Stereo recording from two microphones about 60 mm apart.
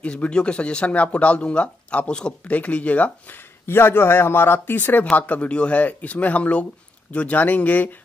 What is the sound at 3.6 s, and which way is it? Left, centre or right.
Speech, left.